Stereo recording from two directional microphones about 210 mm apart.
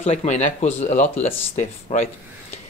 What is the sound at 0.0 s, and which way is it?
Speech, 30° left (ahead or behind).